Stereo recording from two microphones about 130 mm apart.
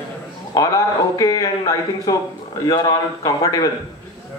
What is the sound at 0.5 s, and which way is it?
A man's voice, 25° left (ahead or behind).